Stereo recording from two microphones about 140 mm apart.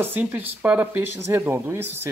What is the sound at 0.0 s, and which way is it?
Speech, 15° right (ahead or behind).